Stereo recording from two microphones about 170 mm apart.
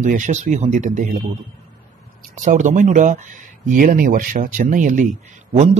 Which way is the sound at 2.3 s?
50° right (ahead or behind).